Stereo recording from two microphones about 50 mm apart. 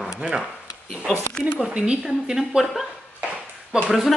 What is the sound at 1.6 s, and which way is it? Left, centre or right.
A woman's voice, centre.